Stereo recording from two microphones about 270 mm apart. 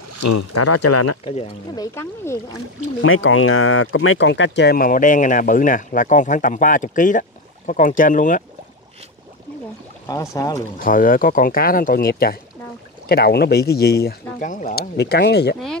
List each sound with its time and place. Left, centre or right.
0.2 s speech: left
1.2 s speech: left
3.0 s speech: left
10.0 s speech: centre
10.8 s speech: left